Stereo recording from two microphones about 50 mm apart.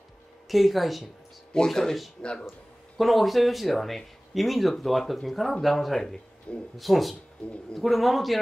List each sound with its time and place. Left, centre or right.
0.5 s speech: centre
1.5 s speech: centre
6.5 s speech: left
6.8 s speech: centre